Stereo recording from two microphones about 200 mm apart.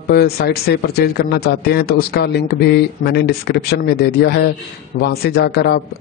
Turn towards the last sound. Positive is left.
turn(degrees=55)  # may be behind; listen again after turning